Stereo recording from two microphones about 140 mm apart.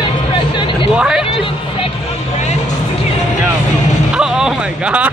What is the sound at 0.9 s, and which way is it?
Speech, 5° right (ahead or behind).